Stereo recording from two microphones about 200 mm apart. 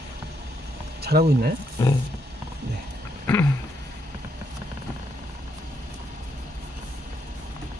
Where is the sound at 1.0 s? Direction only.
50° right (ahead or behind).